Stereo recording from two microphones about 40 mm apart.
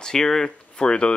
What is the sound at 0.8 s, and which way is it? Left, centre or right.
Speech, left.